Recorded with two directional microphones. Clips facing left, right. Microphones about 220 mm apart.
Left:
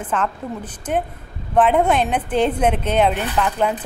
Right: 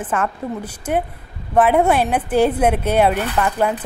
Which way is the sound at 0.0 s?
10° right (ahead or behind).